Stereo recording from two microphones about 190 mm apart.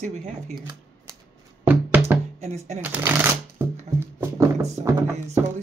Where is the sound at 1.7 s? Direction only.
10° right (ahead or behind).